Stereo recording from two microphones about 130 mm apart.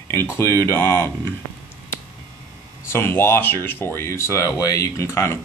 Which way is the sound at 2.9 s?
20° left (ahead or behind).